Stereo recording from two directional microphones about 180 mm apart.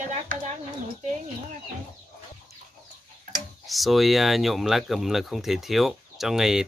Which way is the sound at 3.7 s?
Centre (ahead or behind).